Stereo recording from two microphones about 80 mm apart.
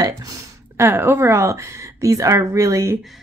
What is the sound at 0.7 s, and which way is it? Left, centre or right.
Speech, right.